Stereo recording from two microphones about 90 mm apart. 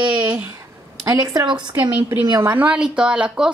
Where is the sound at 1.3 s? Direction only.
55° right (ahead or behind).